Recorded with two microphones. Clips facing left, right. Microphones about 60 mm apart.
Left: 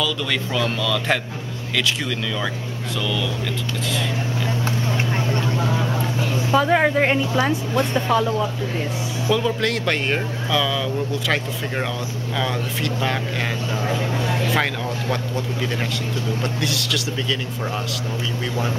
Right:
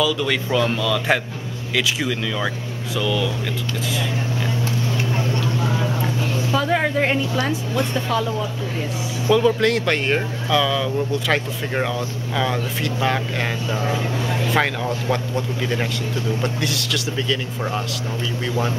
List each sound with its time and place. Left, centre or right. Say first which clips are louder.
0.0 s speech: right 3 dB; centre
5.1 s vehicle: even; left
6.5 s a woman's voice: left 4 dB; centre
9.3 s speech: right 5 dB; centre
14.5 s speech: right 2 dB; centre
16.6 s speech: even; centre